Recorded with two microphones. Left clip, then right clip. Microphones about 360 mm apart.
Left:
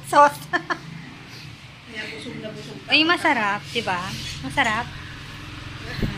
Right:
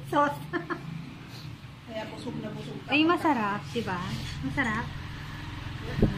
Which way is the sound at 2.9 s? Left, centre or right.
Centre.